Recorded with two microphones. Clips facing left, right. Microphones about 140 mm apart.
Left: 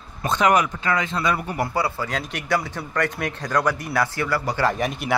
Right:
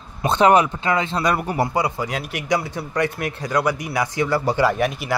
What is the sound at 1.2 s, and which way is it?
Speech, 45° right (ahead or behind).